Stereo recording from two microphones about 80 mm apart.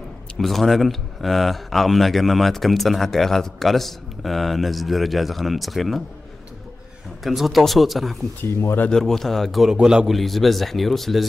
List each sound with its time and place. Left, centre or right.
0.4 s speech: centre
7.2 s speech: centre
8.4 s speech: left
8.9 s speech: centre